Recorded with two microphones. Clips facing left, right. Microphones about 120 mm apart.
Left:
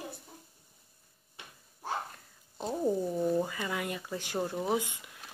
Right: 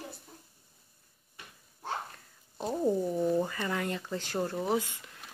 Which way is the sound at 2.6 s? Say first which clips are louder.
Right 1 dB; 5° right (ahead or behind).